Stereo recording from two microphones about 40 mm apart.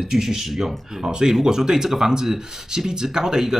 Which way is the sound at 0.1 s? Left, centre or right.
Centre.